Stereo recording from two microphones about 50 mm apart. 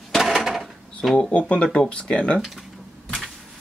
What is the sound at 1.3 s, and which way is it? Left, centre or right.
Speech, left.